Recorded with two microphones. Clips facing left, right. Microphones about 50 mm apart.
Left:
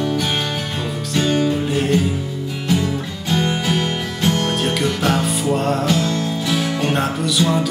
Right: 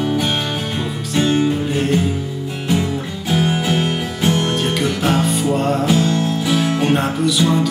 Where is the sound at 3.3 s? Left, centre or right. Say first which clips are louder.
Right 2 dB; centre.